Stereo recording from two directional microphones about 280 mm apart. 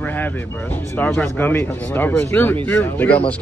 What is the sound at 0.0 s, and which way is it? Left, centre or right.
Speech, centre.